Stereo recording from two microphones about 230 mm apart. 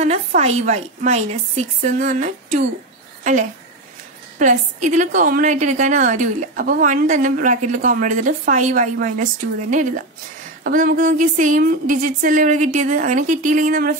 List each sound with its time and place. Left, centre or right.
0.0 s a woman's voice: right
4.4 s a woman's voice: right